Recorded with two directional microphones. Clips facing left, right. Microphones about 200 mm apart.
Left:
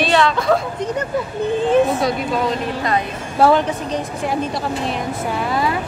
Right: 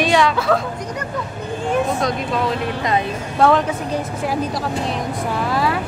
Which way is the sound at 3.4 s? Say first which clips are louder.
Left 1 dB; 5° left (ahead or behind).